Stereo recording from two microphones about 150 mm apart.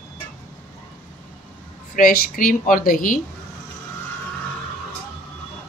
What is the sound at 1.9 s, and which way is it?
Speech, 70° left (ahead or behind).